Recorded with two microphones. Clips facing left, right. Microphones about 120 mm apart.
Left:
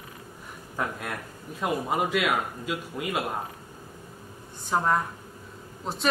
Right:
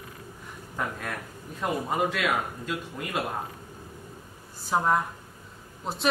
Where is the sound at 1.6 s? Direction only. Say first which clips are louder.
Even; 5° left (ahead or behind).